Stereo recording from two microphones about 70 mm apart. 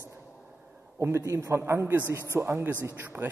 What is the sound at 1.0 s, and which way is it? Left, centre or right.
A man's voice, right.